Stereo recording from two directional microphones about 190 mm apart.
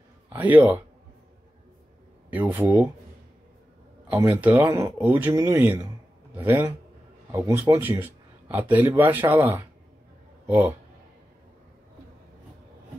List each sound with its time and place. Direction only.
0.3 s speech: 10° right (ahead or behind)
2.3 s speech: 10° right (ahead or behind)
4.1 s speech: 10° right (ahead or behind)